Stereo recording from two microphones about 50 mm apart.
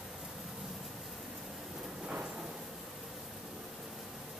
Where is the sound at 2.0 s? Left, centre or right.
Right.